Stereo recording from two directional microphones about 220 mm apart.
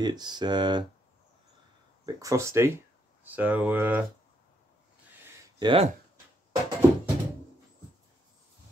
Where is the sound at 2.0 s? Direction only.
15° right (ahead or behind).